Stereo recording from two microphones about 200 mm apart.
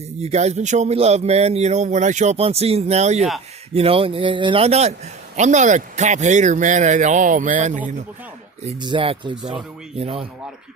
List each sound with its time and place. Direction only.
0.2 s a man's voice: 35° right (ahead or behind)
8.6 s speech: 25° right (ahead or behind)